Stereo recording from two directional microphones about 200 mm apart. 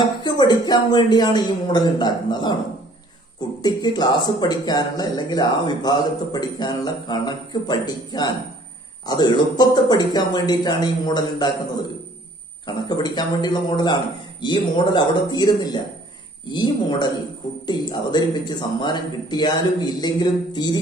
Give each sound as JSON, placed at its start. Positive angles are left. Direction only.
{"t": 0.0, "sound": "speech", "side_deg": 20}